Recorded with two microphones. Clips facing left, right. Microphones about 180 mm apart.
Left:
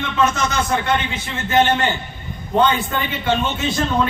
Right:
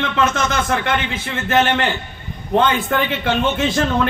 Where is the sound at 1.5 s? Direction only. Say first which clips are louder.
Even; 80° right.